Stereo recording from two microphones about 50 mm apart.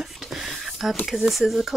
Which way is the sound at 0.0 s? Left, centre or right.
Centre.